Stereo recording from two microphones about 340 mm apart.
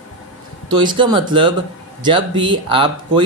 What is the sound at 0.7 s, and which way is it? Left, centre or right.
Speech, centre.